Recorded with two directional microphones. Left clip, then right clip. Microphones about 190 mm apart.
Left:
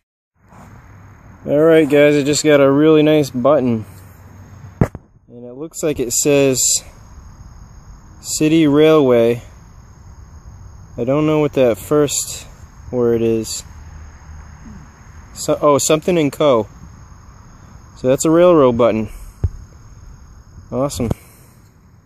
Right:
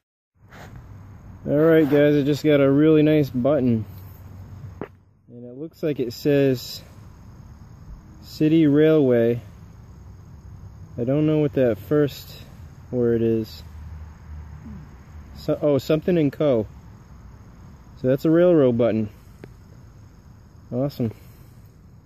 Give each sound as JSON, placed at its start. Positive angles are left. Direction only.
{"t": 1.5, "sound": "speech", "side_deg": 5}
{"t": 5.6, "sound": "speech", "side_deg": 10}
{"t": 8.4, "sound": "speech", "side_deg": 5}
{"t": 11.0, "sound": "speech", "side_deg": 5}
{"t": 15.4, "sound": "speech", "side_deg": 5}
{"t": 18.0, "sound": "speech", "side_deg": 5}
{"t": 21.0, "sound": "speech", "side_deg": 5}